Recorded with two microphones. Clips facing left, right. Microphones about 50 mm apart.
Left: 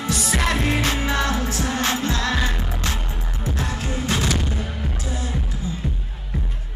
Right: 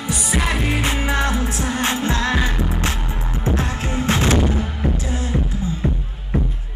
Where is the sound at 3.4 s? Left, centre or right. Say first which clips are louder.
Right 4 dB; right.